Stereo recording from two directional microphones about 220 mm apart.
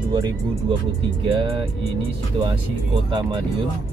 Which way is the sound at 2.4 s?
20° right (ahead or behind).